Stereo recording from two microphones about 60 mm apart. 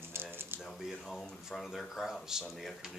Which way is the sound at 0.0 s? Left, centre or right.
Right.